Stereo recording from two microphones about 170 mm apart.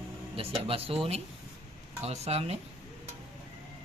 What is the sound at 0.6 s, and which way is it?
Speech, 35° right (ahead or behind).